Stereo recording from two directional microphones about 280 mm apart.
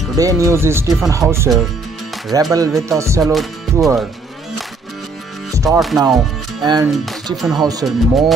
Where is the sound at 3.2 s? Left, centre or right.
Centre.